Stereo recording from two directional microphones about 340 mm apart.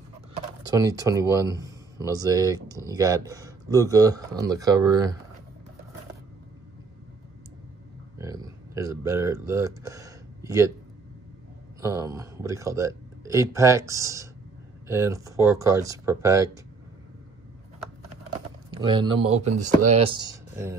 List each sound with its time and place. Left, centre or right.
0.7 s speech: centre
8.2 s a sound: centre
11.8 s speech: centre
18.7 s speech: centre
20.2 s speech: centre